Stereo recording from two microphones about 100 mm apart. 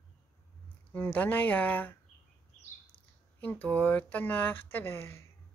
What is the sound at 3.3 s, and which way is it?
Speech, 15° left (ahead or behind).